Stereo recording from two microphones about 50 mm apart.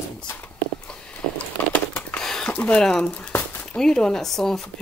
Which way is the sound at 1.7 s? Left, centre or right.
Left.